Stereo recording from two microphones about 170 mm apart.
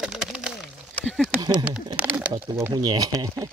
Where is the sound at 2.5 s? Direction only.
20° right (ahead or behind).